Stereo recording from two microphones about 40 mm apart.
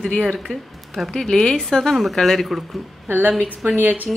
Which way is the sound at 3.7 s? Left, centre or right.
Right.